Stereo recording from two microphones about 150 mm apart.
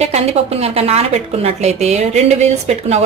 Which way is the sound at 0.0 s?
45° right (ahead or behind).